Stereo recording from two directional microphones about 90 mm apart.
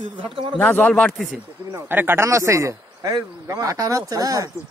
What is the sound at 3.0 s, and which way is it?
Speech, 45° right (ahead or behind).